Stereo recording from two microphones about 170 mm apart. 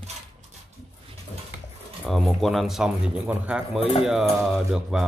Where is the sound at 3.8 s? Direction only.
35° left (ahead or behind).